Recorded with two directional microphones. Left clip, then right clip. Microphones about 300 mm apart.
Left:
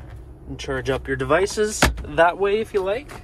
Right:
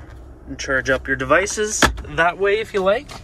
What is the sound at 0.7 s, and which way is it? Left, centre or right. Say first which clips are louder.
Speech: right 6 dB; centre.